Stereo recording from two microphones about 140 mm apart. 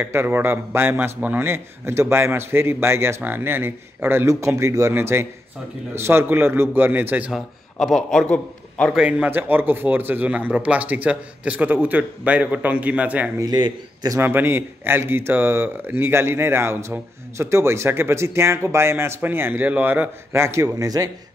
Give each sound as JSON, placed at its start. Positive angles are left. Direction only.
{"t": 0.0, "sound": "a man's voice", "side_deg": -15}
{"t": 7.7, "sound": "a man's voice", "side_deg": 5}
{"t": 8.9, "sound": "a man's voice", "side_deg": -10}
{"t": 13.4, "sound": "a man's voice", "side_deg": -30}
{"t": 14.2, "sound": "a man's voice", "side_deg": -15}